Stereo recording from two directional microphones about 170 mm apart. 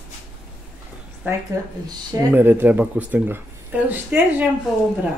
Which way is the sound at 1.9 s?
15° right (ahead or behind).